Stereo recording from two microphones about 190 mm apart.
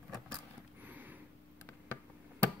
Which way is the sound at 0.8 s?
10° right (ahead or behind).